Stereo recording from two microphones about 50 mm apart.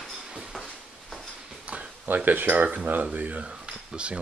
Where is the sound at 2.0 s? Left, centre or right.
Right.